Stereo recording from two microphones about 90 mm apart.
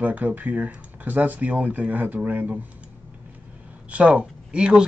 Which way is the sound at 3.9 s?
10° right (ahead or behind).